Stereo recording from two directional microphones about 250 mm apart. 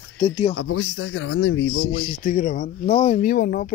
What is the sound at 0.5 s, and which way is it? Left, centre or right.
A man's voice, left.